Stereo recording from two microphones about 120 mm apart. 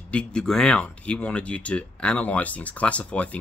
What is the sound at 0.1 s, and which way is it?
Speech, 10° left (ahead or behind).